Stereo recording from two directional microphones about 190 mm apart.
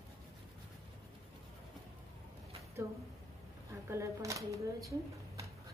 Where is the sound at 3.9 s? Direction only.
15° right (ahead or behind).